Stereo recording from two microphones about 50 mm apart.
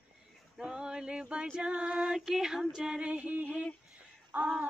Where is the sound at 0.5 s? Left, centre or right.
Centre.